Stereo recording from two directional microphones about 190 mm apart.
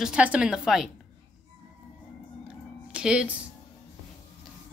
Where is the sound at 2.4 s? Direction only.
5° right (ahead or behind).